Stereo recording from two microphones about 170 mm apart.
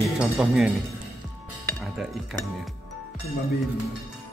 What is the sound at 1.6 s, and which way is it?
Cutlery, centre (ahead or behind).